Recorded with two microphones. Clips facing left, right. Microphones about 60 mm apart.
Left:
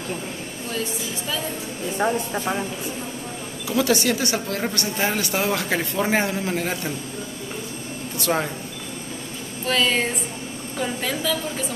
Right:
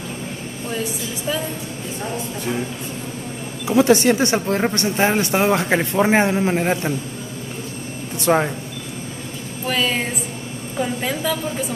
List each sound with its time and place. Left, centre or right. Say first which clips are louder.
3.6 s a woman's voice: right 6 dB; right
8.2 s speech: right 6 dB; right
9.7 s a woman's voice: even; centre